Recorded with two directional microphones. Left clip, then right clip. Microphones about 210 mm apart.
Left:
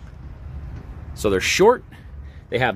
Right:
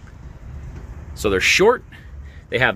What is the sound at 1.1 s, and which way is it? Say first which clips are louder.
Speech: right 3 dB; 20° left (ahead or behind).